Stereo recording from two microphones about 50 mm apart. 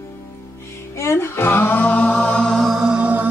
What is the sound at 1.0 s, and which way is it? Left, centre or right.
Music, left.